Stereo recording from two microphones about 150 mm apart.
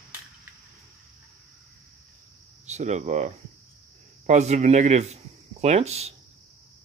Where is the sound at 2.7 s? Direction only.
50° right (ahead or behind).